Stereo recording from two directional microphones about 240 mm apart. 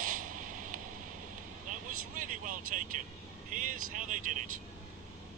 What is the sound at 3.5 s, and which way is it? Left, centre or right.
Speech, right.